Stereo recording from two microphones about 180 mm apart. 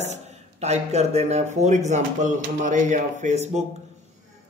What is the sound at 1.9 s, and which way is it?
Speech, 45° right (ahead or behind).